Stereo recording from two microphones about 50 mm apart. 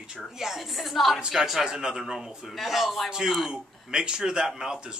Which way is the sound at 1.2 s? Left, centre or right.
Centre.